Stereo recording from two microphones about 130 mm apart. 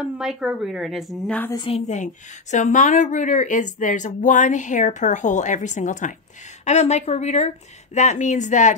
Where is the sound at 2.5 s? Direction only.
75° left (ahead or behind).